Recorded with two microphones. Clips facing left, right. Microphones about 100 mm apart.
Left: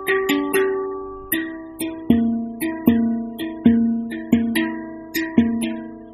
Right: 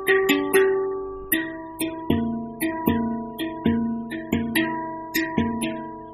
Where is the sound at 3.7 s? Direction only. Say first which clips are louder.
Left 6 dB; 35° right (ahead or behind).